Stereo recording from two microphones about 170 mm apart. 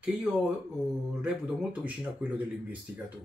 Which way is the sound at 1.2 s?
10° right (ahead or behind).